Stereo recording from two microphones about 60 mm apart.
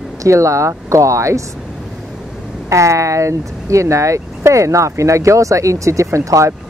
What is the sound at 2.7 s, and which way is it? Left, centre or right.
Speech, right.